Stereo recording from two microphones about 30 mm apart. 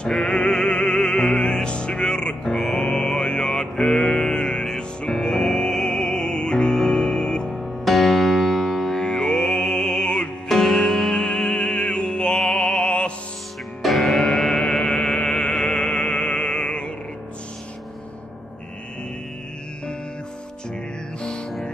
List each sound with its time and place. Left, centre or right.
0.1 s music: centre
0.5 s music: left
2.8 s mantra: left
4.2 s music: left
7.5 s music: centre
8.9 s music: centre; by 10.3 s left
10.5 s music: centre
10.8 s music: centre
11.2 s music: left
12.8 s music: left
13.8 s music: centre
14.5 s music: left
15.1 s music: left